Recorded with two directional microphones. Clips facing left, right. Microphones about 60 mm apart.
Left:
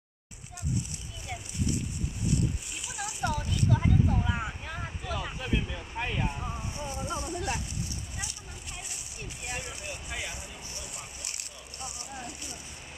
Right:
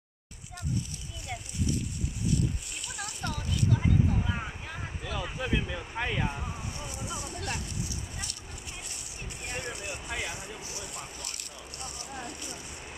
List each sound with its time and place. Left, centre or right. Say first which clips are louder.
2.8 s a sound: left 5 dB; centre
5.4 s vehicle: right 1 dB; centre
5.9 s speech: right 1 dB; right
6.6 s vehicle: left 3 dB; left
7.2 s vehicle: left 3 dB; centre
9.6 s vehicle: right 2 dB; right
10.1 s a sound: right 2 dB; centre